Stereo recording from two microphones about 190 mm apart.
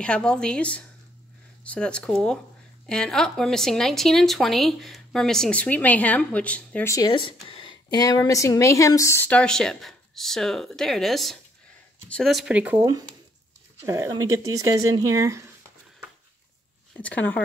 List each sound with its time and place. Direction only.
0.0 s a woman's voice: 5° left (ahead or behind); by 15.4 s 15° right (ahead or behind)
16.9 s speech: 5° left (ahead or behind)